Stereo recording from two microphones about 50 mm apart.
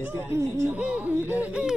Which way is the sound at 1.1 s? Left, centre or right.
Right.